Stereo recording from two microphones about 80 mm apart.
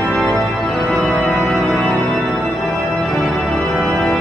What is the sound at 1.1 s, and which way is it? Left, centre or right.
Organ, centre.